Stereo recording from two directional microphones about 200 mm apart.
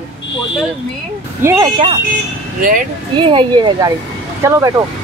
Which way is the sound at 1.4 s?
15° right (ahead or behind).